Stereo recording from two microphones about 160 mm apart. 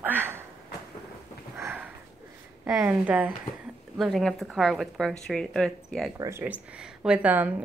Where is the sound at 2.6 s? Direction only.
10° right (ahead or behind).